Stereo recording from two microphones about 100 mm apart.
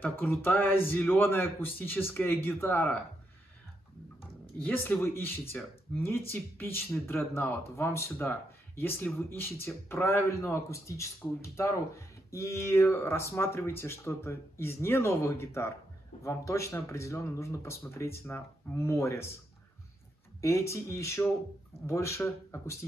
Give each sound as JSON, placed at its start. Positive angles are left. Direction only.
{"t": 0.0, "sound": "speech", "side_deg": 20}
{"t": 4.6, "sound": "speech", "side_deg": 20}
{"t": 20.3, "sound": "speech", "side_deg": 30}